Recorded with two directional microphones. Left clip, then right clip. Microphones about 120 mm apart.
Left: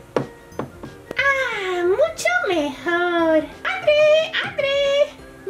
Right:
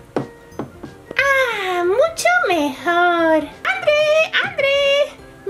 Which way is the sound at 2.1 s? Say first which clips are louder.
Right 4 dB; 40° right (ahead or behind).